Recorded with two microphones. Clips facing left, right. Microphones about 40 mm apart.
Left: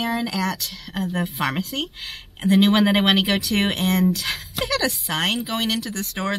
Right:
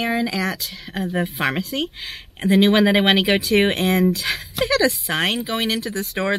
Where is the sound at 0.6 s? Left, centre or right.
Right.